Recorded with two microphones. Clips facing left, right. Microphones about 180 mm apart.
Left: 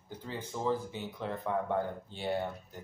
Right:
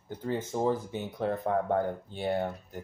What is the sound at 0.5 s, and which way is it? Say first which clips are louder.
Speech: right 2 dB; 40° right (ahead or behind).